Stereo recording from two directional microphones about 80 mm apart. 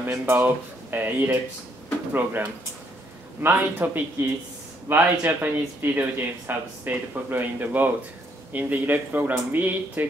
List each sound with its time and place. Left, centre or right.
0.0 s speech: right